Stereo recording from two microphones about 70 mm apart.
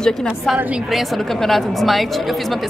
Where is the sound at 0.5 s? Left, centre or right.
Centre.